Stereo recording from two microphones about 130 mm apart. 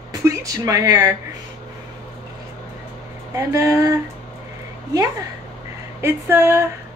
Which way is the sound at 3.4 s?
25° right (ahead or behind).